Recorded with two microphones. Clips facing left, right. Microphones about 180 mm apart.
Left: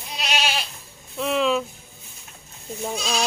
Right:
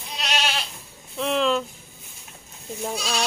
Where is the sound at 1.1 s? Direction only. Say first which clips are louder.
Left 1 dB; centre (ahead or behind).